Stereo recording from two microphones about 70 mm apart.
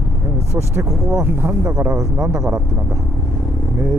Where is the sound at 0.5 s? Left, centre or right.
Right.